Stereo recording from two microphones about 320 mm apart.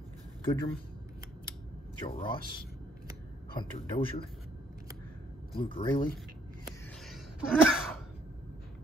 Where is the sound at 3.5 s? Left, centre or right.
Centre.